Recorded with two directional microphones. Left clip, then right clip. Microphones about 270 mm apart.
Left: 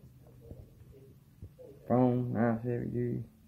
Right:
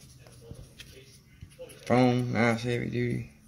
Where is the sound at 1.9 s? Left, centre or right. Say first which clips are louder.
Right 4 dB; right.